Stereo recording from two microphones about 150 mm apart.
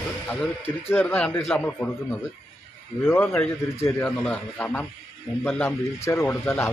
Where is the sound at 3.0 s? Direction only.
15° left (ahead or behind).